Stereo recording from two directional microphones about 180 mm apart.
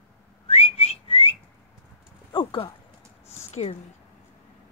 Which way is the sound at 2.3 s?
25° left (ahead or behind).